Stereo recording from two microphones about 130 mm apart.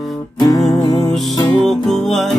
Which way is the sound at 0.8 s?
30° left (ahead or behind).